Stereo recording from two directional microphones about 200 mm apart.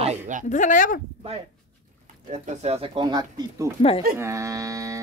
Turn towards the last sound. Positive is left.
turn(degrees=-15)  # may be behind; listen again after turning